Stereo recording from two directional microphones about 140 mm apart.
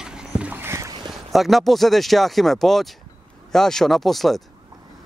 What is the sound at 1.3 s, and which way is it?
Speech, centre (ahead or behind).